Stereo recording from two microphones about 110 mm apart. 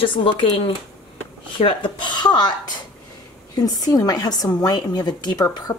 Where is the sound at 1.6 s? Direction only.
50° left (ahead or behind).